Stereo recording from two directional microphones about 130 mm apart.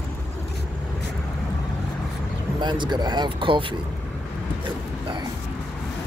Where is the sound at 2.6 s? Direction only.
35° right (ahead or behind).